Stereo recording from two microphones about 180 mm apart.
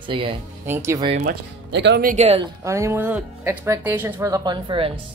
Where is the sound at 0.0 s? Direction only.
30° right (ahead or behind).